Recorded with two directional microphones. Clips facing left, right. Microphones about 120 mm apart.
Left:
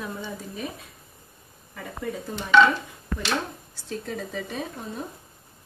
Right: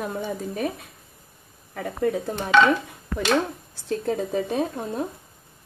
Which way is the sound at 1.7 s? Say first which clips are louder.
Right 8 dB; 60° right (ahead or behind).